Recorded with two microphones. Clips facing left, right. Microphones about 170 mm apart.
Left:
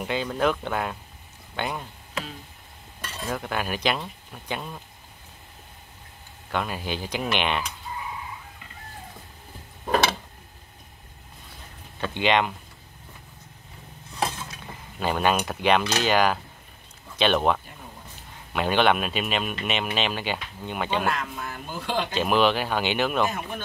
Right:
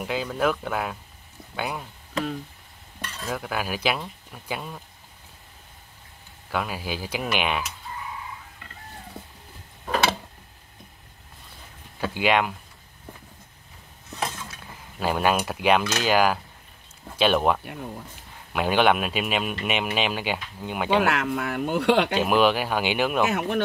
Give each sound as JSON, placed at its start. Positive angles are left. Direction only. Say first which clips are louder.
{"t": 0.0, "sound": "speech", "louder": "even", "side_deg": 0}
{"t": 3.3, "sound": "speech", "louder": "even", "side_deg": -5}
{"t": 6.5, "sound": "speech", "louder": "even", "side_deg": -5}
{"t": 12.0, "sound": "speech", "louder": "even", "side_deg": -5}
{"t": 15.0, "sound": "speech", "louder": "right 1 dB", "side_deg": -5}
{"t": 21.0, "sound": "speech", "louder": "right 4 dB", "side_deg": -75}
{"t": 22.2, "sound": "speech", "louder": "right 1 dB", "side_deg": -10}